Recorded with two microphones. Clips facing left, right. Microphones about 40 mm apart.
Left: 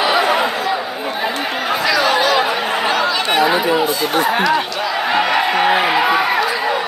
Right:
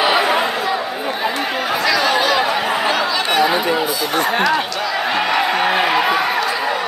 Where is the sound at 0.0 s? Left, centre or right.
Centre.